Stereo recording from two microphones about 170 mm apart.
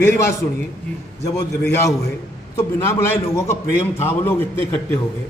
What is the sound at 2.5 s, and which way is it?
A man's voice, 15° left (ahead or behind).